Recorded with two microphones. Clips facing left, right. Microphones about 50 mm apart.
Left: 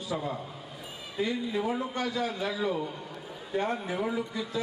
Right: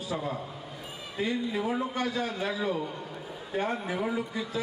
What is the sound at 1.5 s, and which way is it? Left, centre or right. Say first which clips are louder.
A man's voice: even; centre.